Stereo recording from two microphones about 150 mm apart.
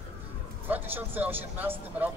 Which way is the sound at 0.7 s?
15° right (ahead or behind).